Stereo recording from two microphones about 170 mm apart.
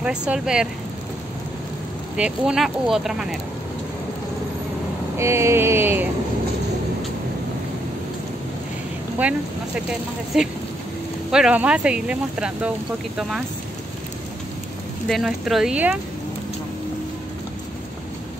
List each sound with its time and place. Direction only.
0.0 s speech: 5° right (ahead or behind)
2.1 s speech: 5° right (ahead or behind)
5.1 s a sound: 15° right (ahead or behind)
10.3 s speech: centre (ahead or behind)
15.0 s speech: centre (ahead or behind)